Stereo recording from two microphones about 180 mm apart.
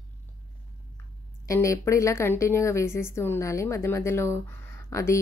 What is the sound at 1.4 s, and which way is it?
A woman's voice, 15° left (ahead or behind).